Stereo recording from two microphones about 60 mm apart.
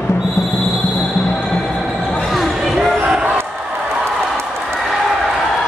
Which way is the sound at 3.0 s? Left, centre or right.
Centre.